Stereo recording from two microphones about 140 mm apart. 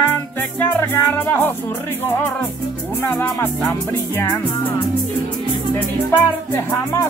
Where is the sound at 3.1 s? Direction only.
15° left (ahead or behind).